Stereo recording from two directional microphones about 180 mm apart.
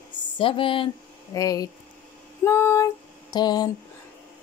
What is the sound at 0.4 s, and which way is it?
Speech, 30° left (ahead or behind).